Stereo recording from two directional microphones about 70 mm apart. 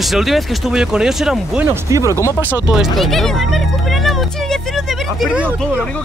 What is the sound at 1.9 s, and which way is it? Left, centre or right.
Speech, right.